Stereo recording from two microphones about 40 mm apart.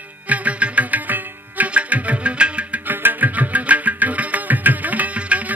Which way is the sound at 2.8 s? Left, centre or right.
Right.